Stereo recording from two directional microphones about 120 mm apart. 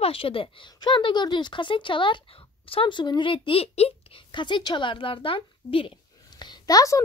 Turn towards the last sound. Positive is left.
turn(degrees=30)  # may be behind; listen again after turning